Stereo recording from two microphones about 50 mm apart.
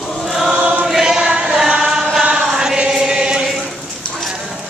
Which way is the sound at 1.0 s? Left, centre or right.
Centre.